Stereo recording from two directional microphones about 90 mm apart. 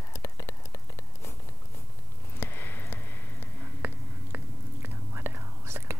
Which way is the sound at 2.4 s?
25° left (ahead or behind).